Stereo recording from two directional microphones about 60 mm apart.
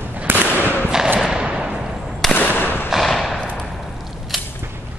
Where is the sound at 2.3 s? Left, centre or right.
Left.